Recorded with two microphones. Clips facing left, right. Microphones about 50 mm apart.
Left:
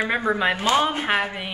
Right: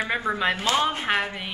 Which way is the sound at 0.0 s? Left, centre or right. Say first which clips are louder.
Left 3 dB; centre.